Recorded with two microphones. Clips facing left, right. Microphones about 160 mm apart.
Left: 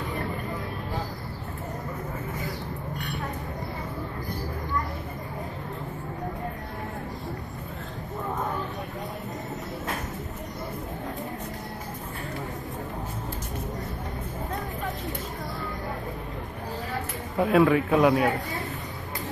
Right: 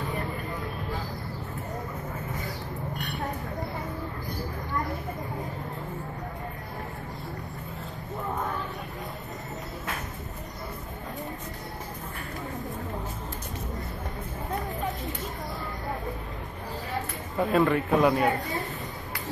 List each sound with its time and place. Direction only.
17.4 s speech: 5° left (ahead or behind)